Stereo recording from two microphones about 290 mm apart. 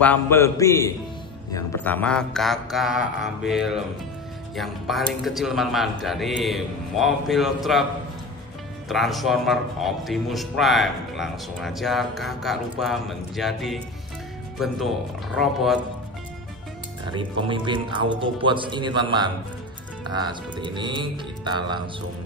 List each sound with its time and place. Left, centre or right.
0.0 s a man's voice: centre
8.8 s speech: centre
15.3 s speech: centre
17.1 s speech: centre